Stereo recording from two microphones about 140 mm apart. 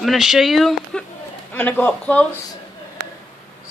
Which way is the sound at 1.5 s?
10° left (ahead or behind).